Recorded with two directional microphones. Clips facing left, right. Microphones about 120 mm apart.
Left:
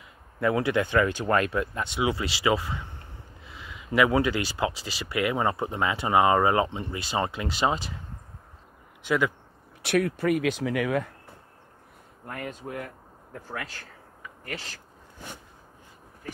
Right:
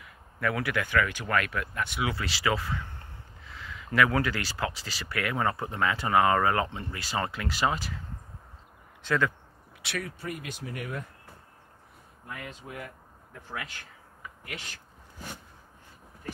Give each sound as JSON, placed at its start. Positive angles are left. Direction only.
{"t": 0.0, "sound": "speech", "side_deg": 25}
{"t": 9.0, "sound": "speech", "side_deg": 15}
{"t": 9.8, "sound": "speech", "side_deg": 55}
{"t": 12.3, "sound": "speech", "side_deg": 45}